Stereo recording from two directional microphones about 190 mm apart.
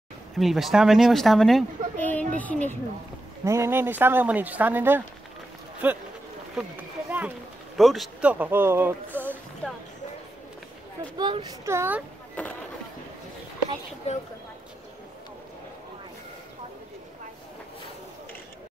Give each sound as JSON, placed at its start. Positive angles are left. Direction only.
{"t": 0.4, "sound": "speech", "side_deg": 0}
{"t": 3.4, "sound": "a man's voice", "side_deg": -15}
{"t": 11.1, "sound": "speech", "side_deg": -25}
{"t": 12.4, "sound": "speech", "side_deg": 5}
{"t": 14.0, "sound": "speech", "side_deg": 35}